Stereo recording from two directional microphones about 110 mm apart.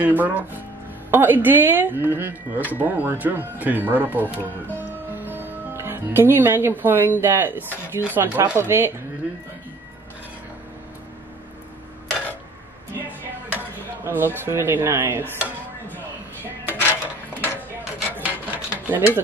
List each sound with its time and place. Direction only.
0.0 s speech: 15° right (ahead or behind)
13.5 s speech: 15° right (ahead or behind)
16.6 s dishes: 20° left (ahead or behind)
18.1 s filing: 15° right (ahead or behind)